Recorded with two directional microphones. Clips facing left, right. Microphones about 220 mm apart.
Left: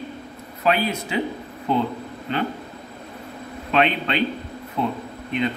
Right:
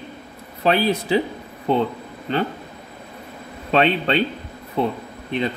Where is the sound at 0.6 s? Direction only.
35° right (ahead or behind).